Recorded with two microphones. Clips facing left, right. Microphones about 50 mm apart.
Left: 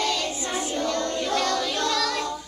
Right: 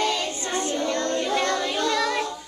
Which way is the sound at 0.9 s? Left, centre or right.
Right.